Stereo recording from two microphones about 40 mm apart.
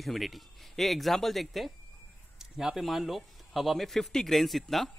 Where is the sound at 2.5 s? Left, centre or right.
Centre.